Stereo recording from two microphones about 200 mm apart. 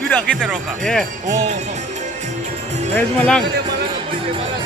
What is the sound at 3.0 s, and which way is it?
Speech, 5° left (ahead or behind).